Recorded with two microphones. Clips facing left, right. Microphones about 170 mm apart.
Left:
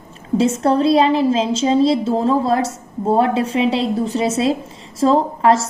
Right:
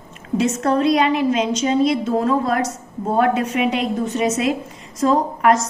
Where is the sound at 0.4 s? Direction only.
30° left (ahead or behind).